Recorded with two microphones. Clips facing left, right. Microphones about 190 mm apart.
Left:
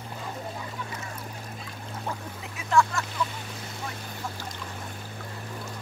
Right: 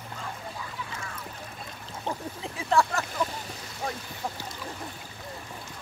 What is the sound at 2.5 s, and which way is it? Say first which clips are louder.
Vehicle: left 1 dB; 35° right (ahead or behind).